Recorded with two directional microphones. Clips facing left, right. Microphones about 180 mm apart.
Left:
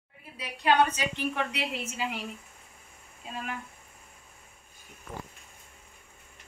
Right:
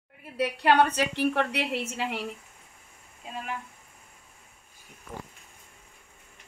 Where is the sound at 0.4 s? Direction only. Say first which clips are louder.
Right 3 dB; 65° right (ahead or behind).